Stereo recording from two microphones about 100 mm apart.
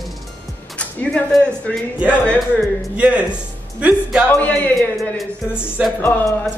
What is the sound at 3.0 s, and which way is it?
Speech, 10° right (ahead or behind).